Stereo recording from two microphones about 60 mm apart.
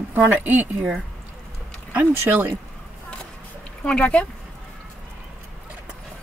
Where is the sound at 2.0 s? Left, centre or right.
Right.